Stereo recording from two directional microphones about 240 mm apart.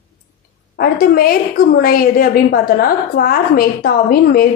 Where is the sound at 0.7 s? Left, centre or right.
Left.